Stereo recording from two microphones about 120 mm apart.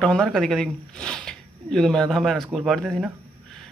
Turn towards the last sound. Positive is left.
turn(degrees=0)  # may be behind; listen again after turning